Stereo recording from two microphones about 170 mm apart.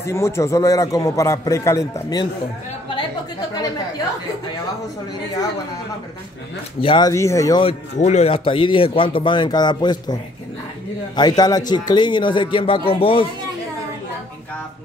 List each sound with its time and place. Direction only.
0.0 s a man's voice: 15° left (ahead or behind)
6.8 s a man's voice: 25° left (ahead or behind)
7.6 s a man's voice: 40° left (ahead or behind)
11.1 s a man's voice: 25° left (ahead or behind)